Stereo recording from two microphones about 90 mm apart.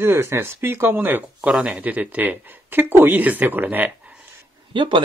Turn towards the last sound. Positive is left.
turn(degrees=-65)  # may be behind; listen again after turning